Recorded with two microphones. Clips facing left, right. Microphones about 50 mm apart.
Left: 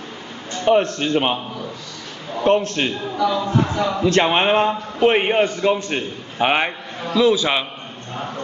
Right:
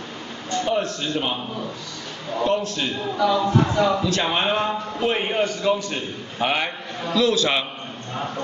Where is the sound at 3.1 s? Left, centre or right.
Centre.